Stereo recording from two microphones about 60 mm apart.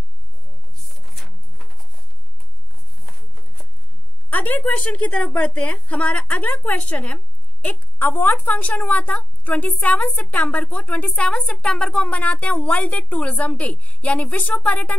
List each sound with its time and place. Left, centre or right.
0.7 s pigeon: centre
3.0 s a sound: centre
4.3 s a woman's voice: left